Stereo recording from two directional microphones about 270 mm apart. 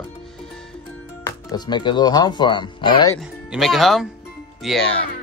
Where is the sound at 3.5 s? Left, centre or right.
Centre.